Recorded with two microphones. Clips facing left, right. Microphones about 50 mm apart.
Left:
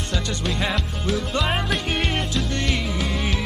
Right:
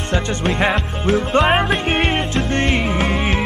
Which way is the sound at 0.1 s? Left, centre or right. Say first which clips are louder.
Right 8 dB; right.